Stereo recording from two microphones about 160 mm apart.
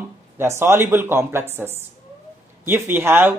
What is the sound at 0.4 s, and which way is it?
Speech, 15° right (ahead or behind).